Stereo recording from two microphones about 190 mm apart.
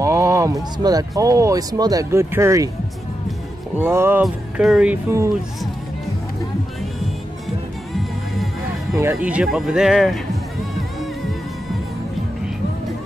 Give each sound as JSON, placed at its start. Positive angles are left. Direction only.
{"t": 0.0, "sound": "speech", "side_deg": -15}
{"t": 3.7, "sound": "speech", "side_deg": -10}
{"t": 8.9, "sound": "speech", "side_deg": -15}